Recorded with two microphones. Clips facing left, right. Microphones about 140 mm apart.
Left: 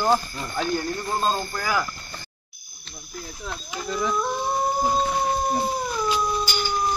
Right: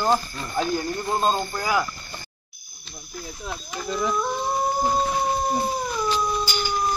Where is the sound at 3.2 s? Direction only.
Centre (ahead or behind).